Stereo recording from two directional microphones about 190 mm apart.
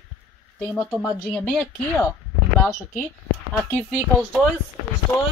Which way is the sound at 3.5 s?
10° left (ahead or behind).